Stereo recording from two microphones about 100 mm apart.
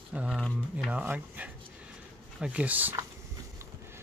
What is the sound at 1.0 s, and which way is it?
Speech, 15° right (ahead or behind).